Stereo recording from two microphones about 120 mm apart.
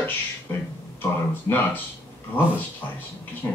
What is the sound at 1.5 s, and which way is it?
Speech, 25° left (ahead or behind).